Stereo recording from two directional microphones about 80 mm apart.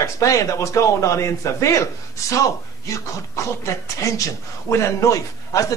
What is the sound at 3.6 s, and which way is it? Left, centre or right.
Speech, left.